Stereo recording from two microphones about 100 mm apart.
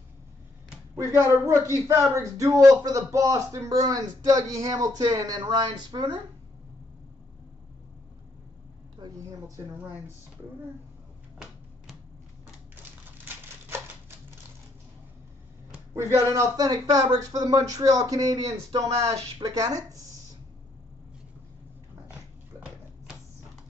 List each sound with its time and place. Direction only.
0.9 s speech: 30° right (ahead or behind); by 6.2 s 45° right (ahead or behind)
9.0 s speech: 40° right (ahead or behind)
13.7 s typewriter: 25° right (ahead or behind)
15.9 s speech: 30° right (ahead or behind)